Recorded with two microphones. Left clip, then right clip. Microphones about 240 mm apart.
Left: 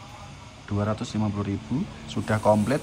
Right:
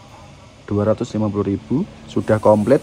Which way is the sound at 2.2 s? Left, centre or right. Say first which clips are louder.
Right 11 dB; right.